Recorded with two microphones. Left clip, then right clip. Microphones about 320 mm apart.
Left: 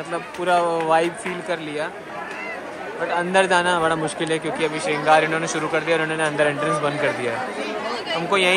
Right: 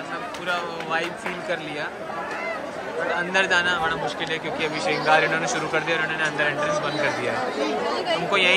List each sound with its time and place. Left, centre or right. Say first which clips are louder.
0.5 s a man's voice: left 9 dB; centre
3.1 s a man's voice: left 4 dB; centre
7.9 s chatter: right 1 dB; right
8.3 s a man's voice: left 2 dB; centre